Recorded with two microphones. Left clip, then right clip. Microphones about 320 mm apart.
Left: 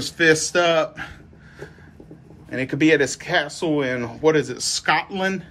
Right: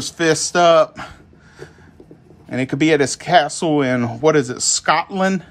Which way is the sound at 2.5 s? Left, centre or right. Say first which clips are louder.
Right 2 dB; centre.